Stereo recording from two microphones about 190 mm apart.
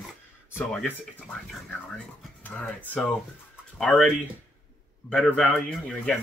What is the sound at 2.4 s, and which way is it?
Speech, 10° left (ahead or behind).